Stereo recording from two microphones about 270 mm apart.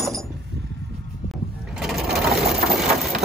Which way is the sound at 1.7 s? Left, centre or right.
Centre.